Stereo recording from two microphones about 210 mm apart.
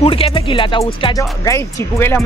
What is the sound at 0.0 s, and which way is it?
Speech, 25° left (ahead or behind).